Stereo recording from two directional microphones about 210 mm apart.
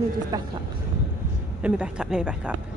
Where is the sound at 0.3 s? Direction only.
20° right (ahead or behind).